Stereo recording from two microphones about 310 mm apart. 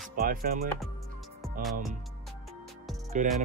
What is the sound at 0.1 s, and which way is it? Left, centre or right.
Speech, right.